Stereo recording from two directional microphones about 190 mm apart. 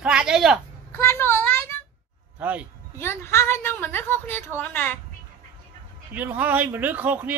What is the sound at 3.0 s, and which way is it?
A woman's voice, 15° left (ahead or behind).